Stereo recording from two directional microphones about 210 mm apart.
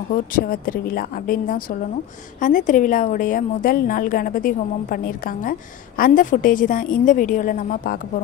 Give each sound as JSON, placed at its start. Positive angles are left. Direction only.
{"t": 0.3, "sound": "a woman's voice", "side_deg": 45}